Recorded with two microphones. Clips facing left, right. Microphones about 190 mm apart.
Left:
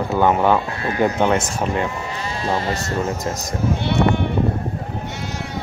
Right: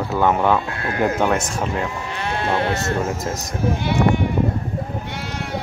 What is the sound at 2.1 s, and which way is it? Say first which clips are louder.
Speech: right 1 dB; 65° right (ahead or behind).